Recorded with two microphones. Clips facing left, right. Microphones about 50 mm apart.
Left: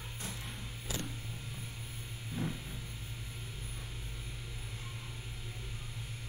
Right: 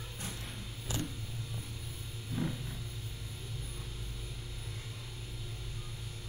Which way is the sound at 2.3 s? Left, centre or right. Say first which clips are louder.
Right 3 dB; left.